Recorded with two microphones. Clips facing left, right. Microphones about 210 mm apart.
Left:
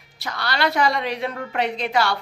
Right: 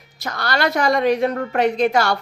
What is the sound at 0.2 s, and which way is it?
Speech, 45° right (ahead or behind).